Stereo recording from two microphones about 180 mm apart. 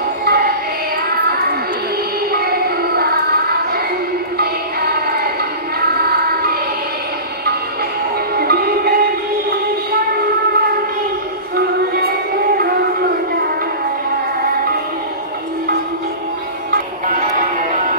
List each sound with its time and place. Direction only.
0.2 s music: 60° right (ahead or behind)
2.3 s a sound: 60° right (ahead or behind)
4.4 s music: 60° right (ahead or behind)
8.4 s music: 60° right (ahead or behind)
16.7 s music: 55° right (ahead or behind)